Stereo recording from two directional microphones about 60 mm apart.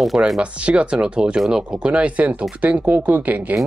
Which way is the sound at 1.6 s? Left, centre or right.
Right.